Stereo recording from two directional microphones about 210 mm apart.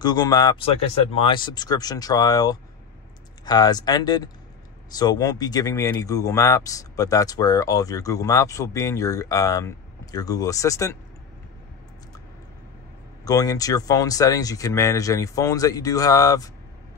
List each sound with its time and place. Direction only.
0.0 s speech: 20° left (ahead or behind)
13.2 s speech: 15° left (ahead or behind)